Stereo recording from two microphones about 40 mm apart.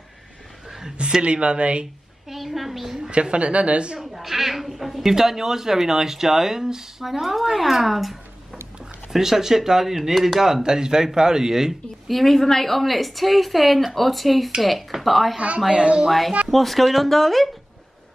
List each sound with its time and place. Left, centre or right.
0.7 s a sound: centre
1.2 s a woman's voice: right
2.2 s a sound: centre
3.1 s a woman's voice: right
4.0 s a woman's voice: centre
10.4 s speech: centre
12.1 s a woman's voice: centre
15.3 s a woman's voice: right
16.1 s a woman's voice: centre